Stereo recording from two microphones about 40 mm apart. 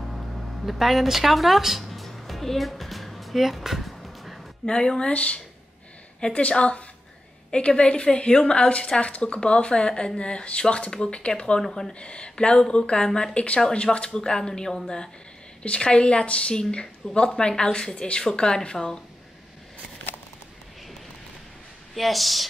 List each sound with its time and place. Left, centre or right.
0.7 s speech: centre
4.6 s speech: left
5.1 s speech: left
11.6 s speech: centre
11.9 s speech: left
15.6 s speech: left
21.9 s speech: centre